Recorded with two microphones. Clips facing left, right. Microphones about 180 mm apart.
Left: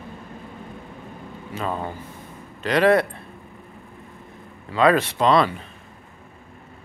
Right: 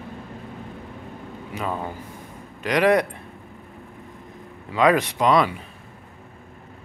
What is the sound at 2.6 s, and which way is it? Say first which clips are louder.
Speech: left 1 dB; 15° right (ahead or behind).